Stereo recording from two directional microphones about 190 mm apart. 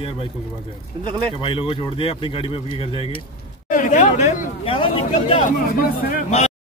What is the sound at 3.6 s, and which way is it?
Speech, 45° left (ahead or behind).